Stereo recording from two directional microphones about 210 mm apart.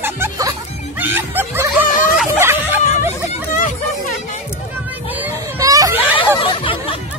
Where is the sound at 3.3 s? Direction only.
35° left (ahead or behind).